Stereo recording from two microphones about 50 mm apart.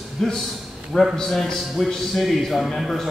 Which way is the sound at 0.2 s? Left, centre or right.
Centre.